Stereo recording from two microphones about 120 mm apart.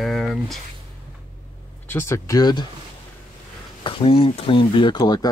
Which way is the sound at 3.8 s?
50° left (ahead or behind).